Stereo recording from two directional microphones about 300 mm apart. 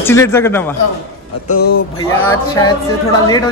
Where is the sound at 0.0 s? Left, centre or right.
Centre.